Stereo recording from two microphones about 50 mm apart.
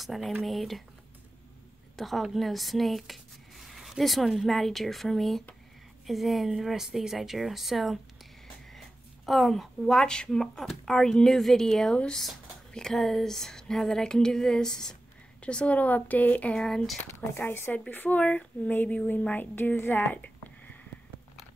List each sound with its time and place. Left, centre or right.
0.0 s speech: centre
2.0 s speech: centre
11.9 s a sound: centre
15.4 s speech: left
16.5 s a sound: centre
17.4 s speech: left
19.5 s speech: left